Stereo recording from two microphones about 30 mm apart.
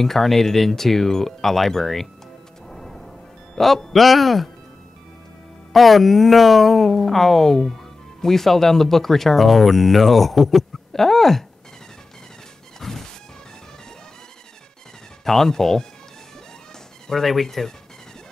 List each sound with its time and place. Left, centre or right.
0.0 s speech: centre
2.7 s music: centre
3.5 s speech: centre
5.7 s speech: centre
12.8 s music: centre
15.2 s speech: centre
17.1 s speech: centre